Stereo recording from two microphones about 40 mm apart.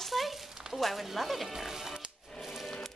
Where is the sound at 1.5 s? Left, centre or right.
Centre.